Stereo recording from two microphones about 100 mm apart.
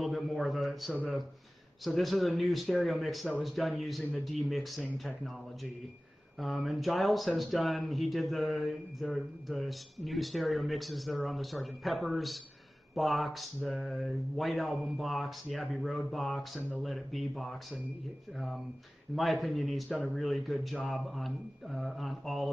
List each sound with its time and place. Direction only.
0.0 s a sound: centre (ahead or behind)
1.9 s speech: centre (ahead or behind)
19.1 s speech: centre (ahead or behind)